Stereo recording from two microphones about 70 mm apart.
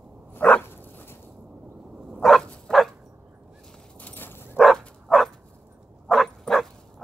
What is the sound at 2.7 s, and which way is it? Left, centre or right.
Bow-wow, centre.